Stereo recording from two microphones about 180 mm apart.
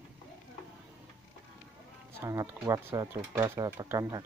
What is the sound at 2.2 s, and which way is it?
Speech, 15° right (ahead or behind).